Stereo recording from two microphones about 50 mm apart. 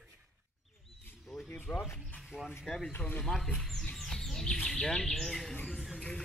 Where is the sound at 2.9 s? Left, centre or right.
Left.